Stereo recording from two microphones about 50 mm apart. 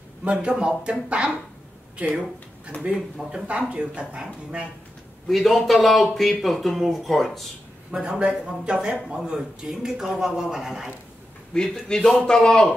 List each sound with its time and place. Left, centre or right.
0.2 s speech: right
5.3 s speech: centre
7.9 s a man's voice: right
11.5 s a man's voice: centre